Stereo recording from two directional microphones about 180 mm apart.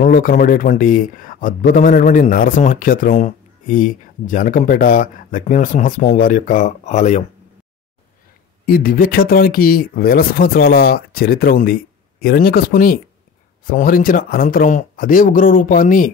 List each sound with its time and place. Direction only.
0.0 s speech: 50° left (ahead or behind)
8.6 s speech: 55° left (ahead or behind)